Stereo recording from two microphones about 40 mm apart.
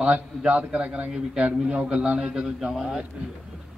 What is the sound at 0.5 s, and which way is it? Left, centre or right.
Speech, right.